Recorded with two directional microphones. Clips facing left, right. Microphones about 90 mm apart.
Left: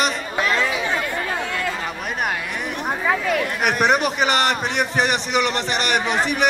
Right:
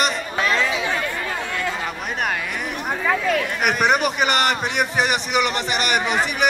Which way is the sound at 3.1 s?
5° left (ahead or behind).